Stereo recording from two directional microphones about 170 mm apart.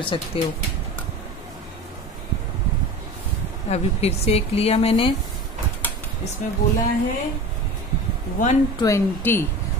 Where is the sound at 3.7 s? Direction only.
35° left (ahead or behind).